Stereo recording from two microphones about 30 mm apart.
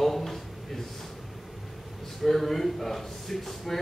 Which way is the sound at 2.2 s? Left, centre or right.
Centre.